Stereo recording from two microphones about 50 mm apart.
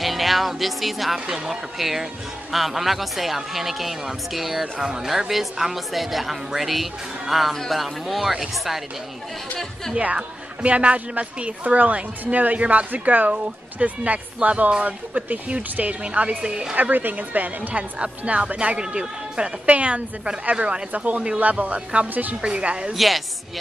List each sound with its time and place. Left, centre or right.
0.0 s speech: centre
10.6 s speech: right
16.7 s a woman's voice: right
22.9 s speech: centre